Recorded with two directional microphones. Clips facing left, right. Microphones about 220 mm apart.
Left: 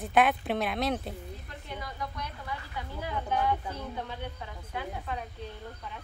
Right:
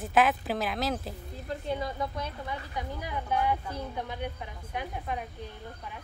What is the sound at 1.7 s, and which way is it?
A woman's voice, 25° right (ahead or behind).